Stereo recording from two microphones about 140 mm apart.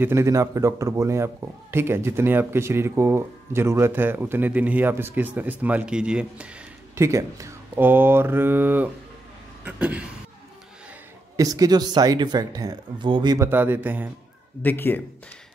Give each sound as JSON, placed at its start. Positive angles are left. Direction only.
{"t": 0.0, "sound": "a man's voice", "side_deg": -20}
{"t": 7.0, "sound": "a man's voice", "side_deg": -20}
{"t": 11.3, "sound": "speech", "side_deg": -25}
{"t": 13.5, "sound": "a man's voice", "side_deg": -15}
{"t": 14.6, "sound": "a man's voice", "side_deg": 15}